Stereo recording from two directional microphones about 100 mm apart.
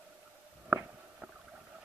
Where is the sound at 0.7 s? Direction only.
25° right (ahead or behind).